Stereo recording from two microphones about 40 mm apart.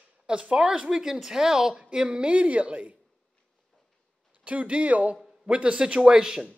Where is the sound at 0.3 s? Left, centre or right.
Right.